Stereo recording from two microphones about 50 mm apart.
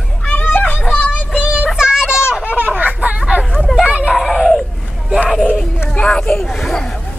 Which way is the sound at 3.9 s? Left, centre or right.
Centre.